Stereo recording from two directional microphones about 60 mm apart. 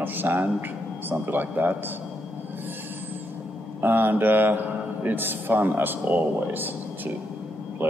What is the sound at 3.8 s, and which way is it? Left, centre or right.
A man's voice, right.